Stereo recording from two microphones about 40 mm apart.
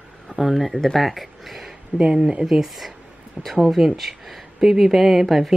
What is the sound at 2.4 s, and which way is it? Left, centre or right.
Speech, centre.